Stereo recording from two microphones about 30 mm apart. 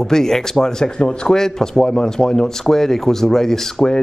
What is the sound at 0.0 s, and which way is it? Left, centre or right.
Speech, centre.